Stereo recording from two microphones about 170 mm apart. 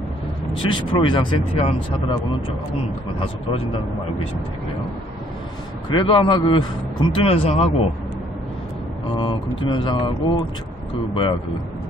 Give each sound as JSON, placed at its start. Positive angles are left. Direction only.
{"t": 0.6, "sound": "speech", "side_deg": 30}
{"t": 5.9, "sound": "a man's voice", "side_deg": 30}
{"t": 9.1, "sound": "speech", "side_deg": 30}